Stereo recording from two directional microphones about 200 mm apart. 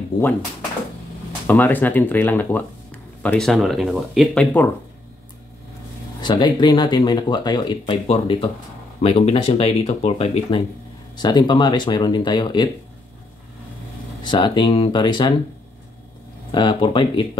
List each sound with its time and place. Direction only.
1.5 s speech: 10° left (ahead or behind)
6.2 s speech: 20° left (ahead or behind)
14.2 s speech: 20° left (ahead or behind)
16.5 s speech: 25° left (ahead or behind)